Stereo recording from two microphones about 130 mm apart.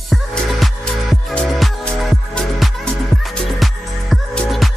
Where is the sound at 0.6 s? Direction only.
Centre (ahead or behind).